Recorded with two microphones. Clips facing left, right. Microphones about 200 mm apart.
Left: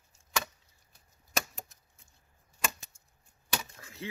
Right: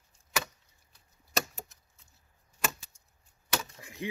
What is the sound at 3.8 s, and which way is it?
Chop, 15° right (ahead or behind).